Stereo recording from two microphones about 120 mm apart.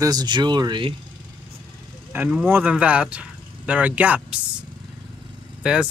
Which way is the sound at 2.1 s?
10° right (ahead or behind).